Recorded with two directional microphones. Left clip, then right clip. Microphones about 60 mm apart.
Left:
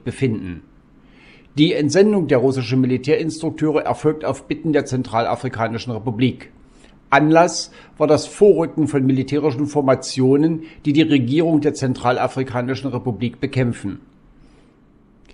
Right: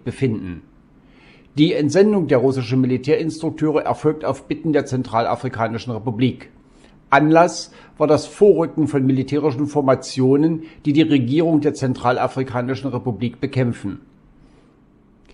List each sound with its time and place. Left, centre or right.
0.0 s a man's voice: left